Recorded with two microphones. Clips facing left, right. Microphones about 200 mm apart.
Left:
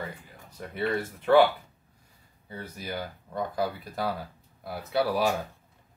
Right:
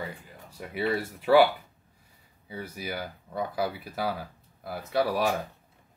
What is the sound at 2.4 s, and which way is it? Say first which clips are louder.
Speech: right 2 dB; 5° right (ahead or behind).